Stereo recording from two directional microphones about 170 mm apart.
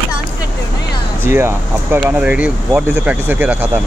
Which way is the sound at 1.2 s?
15° right (ahead or behind).